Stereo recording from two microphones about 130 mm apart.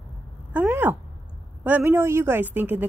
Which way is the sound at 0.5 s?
15° right (ahead or behind).